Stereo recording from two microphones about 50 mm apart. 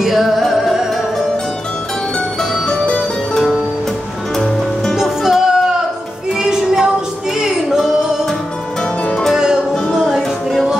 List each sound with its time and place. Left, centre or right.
0.0 s music: centre
3.3 s music: centre
4.9 s music: centre
9.3 s music: centre